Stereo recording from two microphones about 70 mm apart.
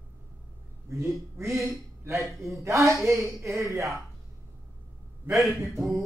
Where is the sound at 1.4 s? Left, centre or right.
Centre.